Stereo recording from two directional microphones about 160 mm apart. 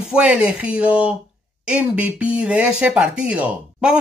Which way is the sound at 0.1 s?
5° right (ahead or behind).